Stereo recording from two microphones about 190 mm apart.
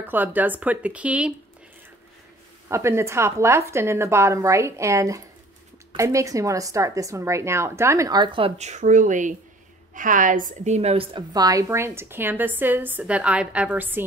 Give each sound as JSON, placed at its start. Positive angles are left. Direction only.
{"t": 0.0, "sound": "a woman's voice", "side_deg": -10}
{"t": 2.7, "sound": "a woman's voice", "side_deg": -15}